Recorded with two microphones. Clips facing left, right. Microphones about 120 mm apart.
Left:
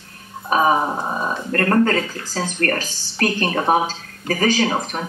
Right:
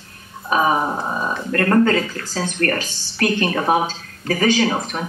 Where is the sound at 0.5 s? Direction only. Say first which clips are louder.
Left 1 dB; 40° left (ahead or behind).